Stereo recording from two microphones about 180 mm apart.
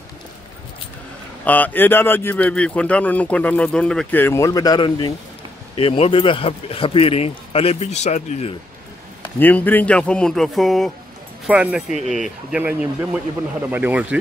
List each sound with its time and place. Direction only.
1.4 s a man's voice: 10° left (ahead or behind); by 8.5 s 35° left (ahead or behind)
9.4 s a man's voice: 10° left (ahead or behind); by 14.0 s 10° right (ahead or behind)